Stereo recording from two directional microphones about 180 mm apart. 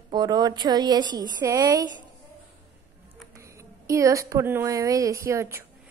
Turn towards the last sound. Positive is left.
turn(degrees=-15)  # may be behind; listen again after turning